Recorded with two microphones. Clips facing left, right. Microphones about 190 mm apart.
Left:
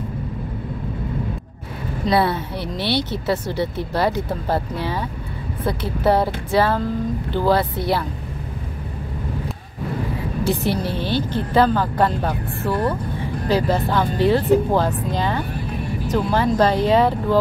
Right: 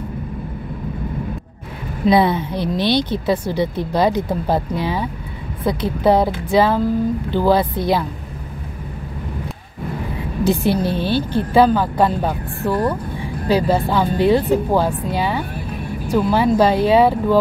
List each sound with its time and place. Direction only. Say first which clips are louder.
2.0 s speech: right 4 dB; 15° right (ahead or behind)
10.4 s a woman's voice: right 4 dB; 15° right (ahead or behind)
11.1 s speech: right 3 dB; 15° left (ahead or behind)
11.5 s speech: right 3 dB; 10° right (ahead or behind)